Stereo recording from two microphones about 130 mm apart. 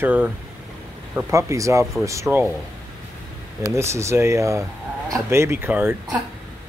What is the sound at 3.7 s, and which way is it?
Speech, 20° right (ahead or behind).